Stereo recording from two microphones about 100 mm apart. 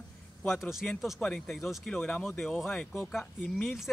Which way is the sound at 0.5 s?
5° right (ahead or behind).